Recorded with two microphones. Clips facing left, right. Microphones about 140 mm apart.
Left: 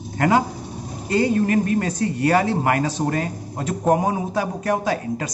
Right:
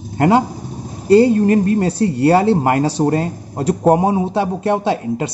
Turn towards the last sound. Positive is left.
turn(degrees=-25)  # may be behind; listen again after turning